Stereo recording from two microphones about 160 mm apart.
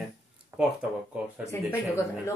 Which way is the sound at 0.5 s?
10° right (ahead or behind).